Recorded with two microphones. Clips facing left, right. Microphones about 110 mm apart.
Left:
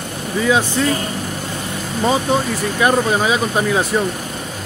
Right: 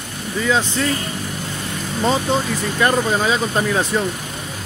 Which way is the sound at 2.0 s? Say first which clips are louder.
Left 2 dB; 10° left (ahead or behind).